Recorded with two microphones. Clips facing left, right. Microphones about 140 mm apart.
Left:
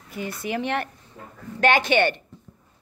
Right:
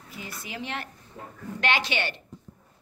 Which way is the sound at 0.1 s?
60° left (ahead or behind).